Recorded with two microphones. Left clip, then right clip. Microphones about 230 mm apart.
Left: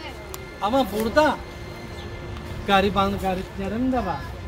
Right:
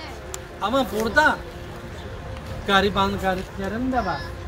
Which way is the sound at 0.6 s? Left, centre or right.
Centre.